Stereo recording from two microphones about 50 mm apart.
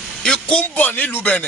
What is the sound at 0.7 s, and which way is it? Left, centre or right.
Speech, left.